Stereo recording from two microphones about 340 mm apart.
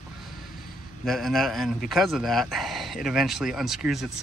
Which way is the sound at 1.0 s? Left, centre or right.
Centre.